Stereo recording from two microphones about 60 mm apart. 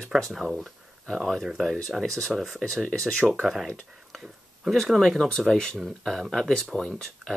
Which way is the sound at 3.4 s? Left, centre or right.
Centre.